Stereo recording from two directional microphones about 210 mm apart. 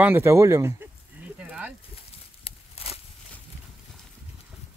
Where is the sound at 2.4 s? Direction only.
30° left (ahead or behind).